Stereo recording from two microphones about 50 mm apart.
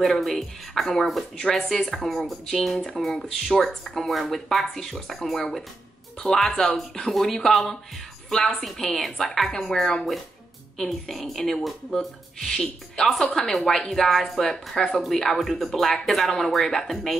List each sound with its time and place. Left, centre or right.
0.0 s speech: centre
12.4 s speech: centre
15.0 s speech: centre